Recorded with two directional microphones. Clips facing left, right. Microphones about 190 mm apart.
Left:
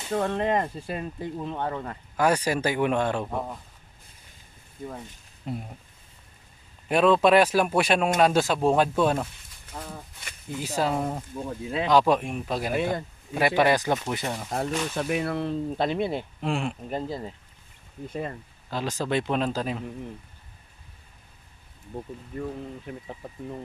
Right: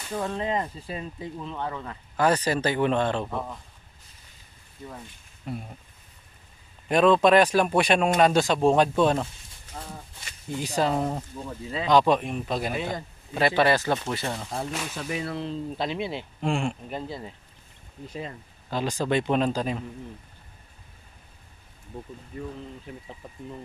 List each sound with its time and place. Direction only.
0.1 s speech: 60° left (ahead or behind); by 2.0 s 40° left (ahead or behind)
2.1 s speech: 10° left (ahead or behind)
5.5 s speech: 20° left (ahead or behind)
6.9 s speech: 5° left (ahead or behind)
10.6 s speech: 5° left (ahead or behind)
14.5 s speech: 60° left (ahead or behind)
16.3 s speech: 5° left (ahead or behind)
16.9 s speech: 40° left (ahead or behind)
18.0 s speech: 55° left (ahead or behind)
18.7 s speech: centre (ahead or behind)
21.9 s speech: 55° left (ahead or behind)